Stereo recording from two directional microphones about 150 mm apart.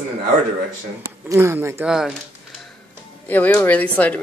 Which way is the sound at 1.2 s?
15° right (ahead or behind).